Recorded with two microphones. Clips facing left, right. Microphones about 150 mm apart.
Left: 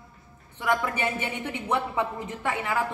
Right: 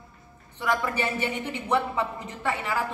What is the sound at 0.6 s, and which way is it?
A man's voice, 10° left (ahead or behind).